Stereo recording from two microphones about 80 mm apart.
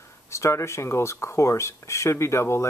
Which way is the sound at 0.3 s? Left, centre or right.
Left.